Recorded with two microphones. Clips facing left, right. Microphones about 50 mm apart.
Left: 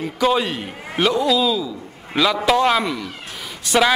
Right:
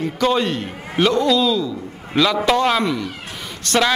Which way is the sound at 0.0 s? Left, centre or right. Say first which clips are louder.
Even; centre.